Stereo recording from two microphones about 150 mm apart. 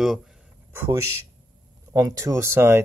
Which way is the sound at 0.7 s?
20° right (ahead or behind).